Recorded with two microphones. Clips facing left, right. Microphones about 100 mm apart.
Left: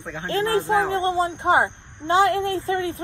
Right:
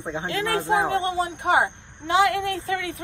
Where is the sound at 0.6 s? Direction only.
20° right (ahead or behind).